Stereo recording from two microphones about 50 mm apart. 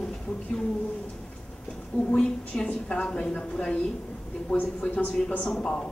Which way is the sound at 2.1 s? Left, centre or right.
Centre.